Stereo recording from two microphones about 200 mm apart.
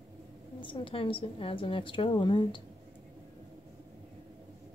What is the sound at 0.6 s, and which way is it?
Speech, 25° left (ahead or behind).